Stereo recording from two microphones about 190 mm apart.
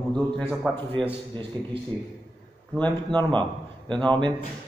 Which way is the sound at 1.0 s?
25° right (ahead or behind).